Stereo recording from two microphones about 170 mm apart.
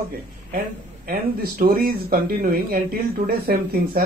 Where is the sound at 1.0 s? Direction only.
60° right (ahead or behind).